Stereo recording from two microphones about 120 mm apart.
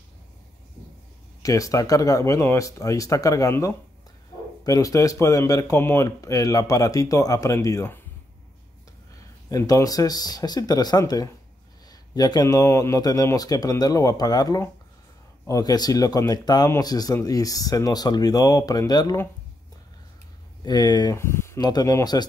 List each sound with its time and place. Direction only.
1.4 s speech: 30° left (ahead or behind)
9.5 s speech: 25° left (ahead or behind)
20.6 s speech: 35° left (ahead or behind)
21.2 s a sound: 20° left (ahead or behind)
21.5 s speech: 35° left (ahead or behind)